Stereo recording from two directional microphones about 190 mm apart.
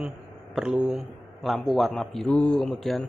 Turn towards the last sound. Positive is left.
turn(degrees=0)  # may be behind; listen again after turning